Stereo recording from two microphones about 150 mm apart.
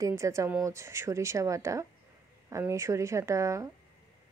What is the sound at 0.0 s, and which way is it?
A woman's voice, 20° right (ahead or behind).